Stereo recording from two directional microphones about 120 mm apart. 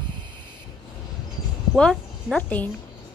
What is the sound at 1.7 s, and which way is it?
A woman's voice, centre (ahead or behind).